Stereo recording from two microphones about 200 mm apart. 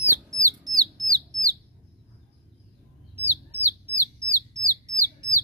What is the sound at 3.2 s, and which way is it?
Bird, 10° right (ahead or behind).